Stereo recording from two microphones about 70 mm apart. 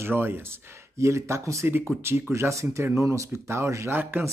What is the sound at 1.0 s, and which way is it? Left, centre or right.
Speech, right.